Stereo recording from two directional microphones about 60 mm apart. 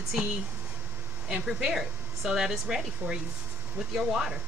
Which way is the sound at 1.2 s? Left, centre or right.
Centre.